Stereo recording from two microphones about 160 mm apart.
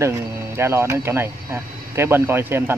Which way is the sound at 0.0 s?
15° right (ahead or behind).